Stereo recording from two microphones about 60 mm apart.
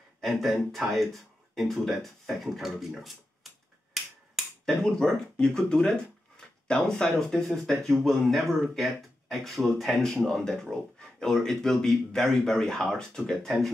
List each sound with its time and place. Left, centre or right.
0.2 s speech: centre
3.9 s finger snapping: centre
4.8 s speech: centre